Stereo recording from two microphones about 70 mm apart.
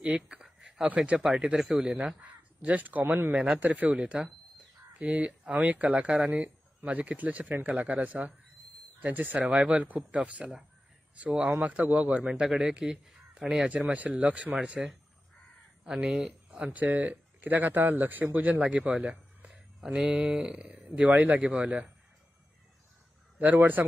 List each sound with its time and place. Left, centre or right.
0.0 s a sound: centre
0.8 s speech: centre
1.9 s speech: centre
15.8 s speech: centre
16.4 s speech: right
18.6 s a sound: centre
20.1 s speech: centre
23.4 s speech: right